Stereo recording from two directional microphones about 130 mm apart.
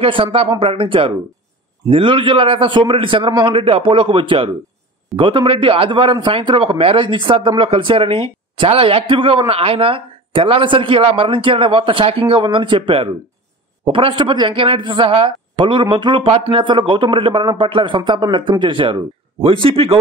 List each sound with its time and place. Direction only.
0.0 s a man's voice: 45° right (ahead or behind)